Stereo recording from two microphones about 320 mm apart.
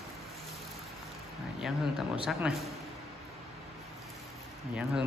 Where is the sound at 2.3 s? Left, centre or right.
Centre.